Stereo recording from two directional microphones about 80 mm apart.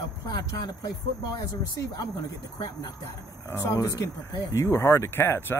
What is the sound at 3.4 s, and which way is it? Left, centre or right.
Speech, left.